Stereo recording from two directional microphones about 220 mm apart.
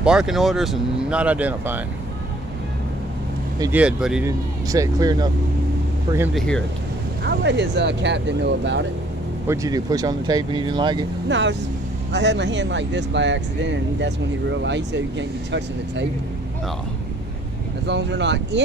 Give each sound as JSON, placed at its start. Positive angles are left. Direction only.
{"t": 0.0, "sound": "speech", "side_deg": -5}
{"t": 3.5, "sound": "speech", "side_deg": -15}
{"t": 3.8, "sound": "speech", "side_deg": -5}
{"t": 4.3, "sound": "speech", "side_deg": -15}
{"t": 6.3, "sound": "speech", "side_deg": 5}
{"t": 7.2, "sound": "speech", "side_deg": -50}
{"t": 9.5, "sound": "speech", "side_deg": -15}
{"t": 11.2, "sound": "speech", "side_deg": -55}
{"t": 17.8, "sound": "speech", "side_deg": -50}